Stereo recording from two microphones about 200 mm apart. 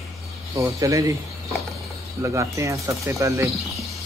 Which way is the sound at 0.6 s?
15° right (ahead or behind).